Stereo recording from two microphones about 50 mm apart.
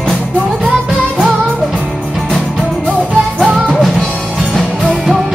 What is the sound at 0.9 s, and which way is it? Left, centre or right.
Music, centre.